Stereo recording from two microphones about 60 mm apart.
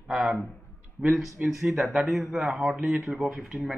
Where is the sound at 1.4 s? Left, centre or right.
Centre.